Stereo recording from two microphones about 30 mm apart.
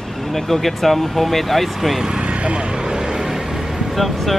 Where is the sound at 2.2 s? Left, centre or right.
Right; by 3.9 s centre.